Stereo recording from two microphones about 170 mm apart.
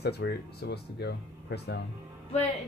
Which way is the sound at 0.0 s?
75° left (ahead or behind).